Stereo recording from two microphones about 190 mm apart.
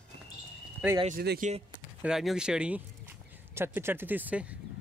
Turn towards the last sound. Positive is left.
turn(degrees=-5)  # may be behind; listen again after turning